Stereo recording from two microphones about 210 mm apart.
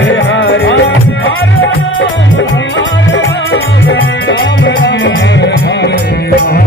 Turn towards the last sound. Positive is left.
turn(degrees=55)  # may be behind; listen again after turning